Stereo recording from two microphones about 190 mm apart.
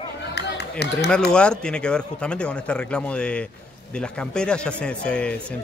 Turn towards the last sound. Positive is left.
turn(degrees=5)  # may be behind; listen again after turning